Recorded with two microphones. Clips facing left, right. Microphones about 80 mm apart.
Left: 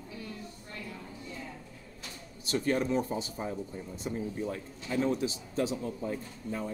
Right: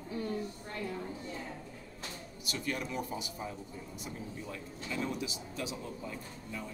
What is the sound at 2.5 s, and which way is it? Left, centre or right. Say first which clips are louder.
Speech: left 9 dB; left.